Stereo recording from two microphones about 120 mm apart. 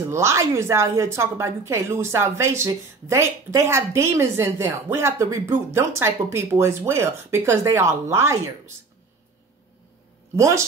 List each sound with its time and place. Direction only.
0.1 s a woman's voice: 25° right (ahead or behind)
10.3 s a woman's voice: 25° right (ahead or behind)